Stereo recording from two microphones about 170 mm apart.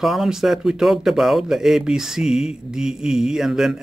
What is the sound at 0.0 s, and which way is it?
Speech, centre (ahead or behind).